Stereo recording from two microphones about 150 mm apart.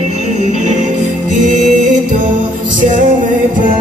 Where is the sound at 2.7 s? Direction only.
60° right (ahead or behind).